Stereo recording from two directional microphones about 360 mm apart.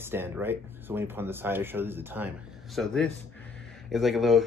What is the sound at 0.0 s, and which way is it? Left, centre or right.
Speech, centre.